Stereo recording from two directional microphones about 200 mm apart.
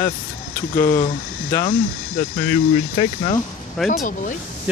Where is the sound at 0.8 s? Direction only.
15° left (ahead or behind).